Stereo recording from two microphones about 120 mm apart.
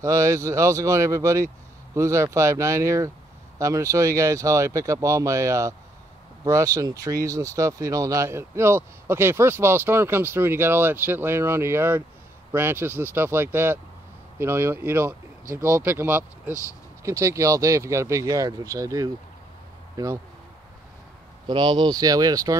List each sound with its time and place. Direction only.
0.0 s speech: 25° right (ahead or behind)
21.5 s speech: 40° right (ahead or behind)